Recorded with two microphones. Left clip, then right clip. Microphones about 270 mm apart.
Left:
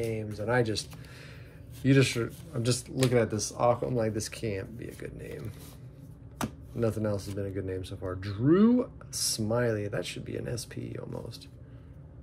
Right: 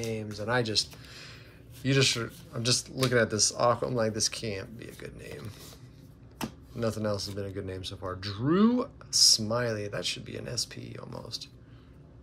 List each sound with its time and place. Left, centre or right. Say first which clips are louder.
0.0 s speech: left 1 dB; centre
3.0 s speech: even; right
3.3 s speech: right 1 dB; centre
6.7 s speech: even; centre